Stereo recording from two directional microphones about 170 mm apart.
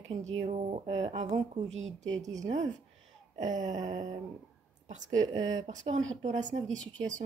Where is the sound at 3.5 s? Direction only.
25° right (ahead or behind).